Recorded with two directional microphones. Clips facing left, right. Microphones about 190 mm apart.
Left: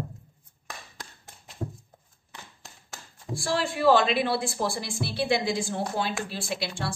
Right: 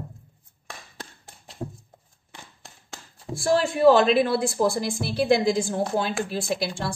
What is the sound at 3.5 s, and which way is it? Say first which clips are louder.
Speech: right 5 dB; 45° right (ahead or behind).